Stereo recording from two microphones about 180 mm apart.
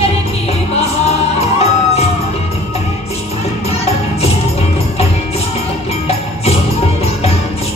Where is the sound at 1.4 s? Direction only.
35° left (ahead or behind).